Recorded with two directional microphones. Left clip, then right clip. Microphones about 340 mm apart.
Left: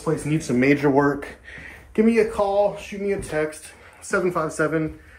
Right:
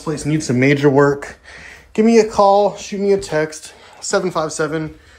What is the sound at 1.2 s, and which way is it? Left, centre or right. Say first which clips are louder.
Speech: right 4 dB; centre.